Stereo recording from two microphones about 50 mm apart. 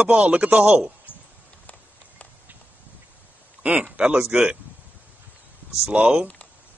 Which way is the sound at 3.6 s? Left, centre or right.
Right.